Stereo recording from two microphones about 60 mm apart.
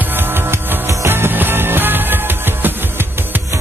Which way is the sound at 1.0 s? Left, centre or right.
Right.